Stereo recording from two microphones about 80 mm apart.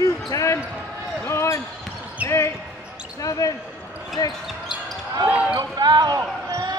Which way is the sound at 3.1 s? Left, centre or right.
Left.